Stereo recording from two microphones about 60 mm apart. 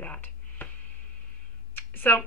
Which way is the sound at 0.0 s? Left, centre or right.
Left.